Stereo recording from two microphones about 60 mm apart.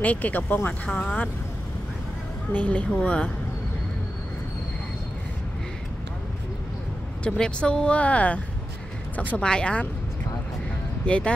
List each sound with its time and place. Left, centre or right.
0.0 s speech: left
0.4 s speech: left
0.7 s speech: centre
2.5 s speech: left
7.2 s speech: centre
11.1 s speech: centre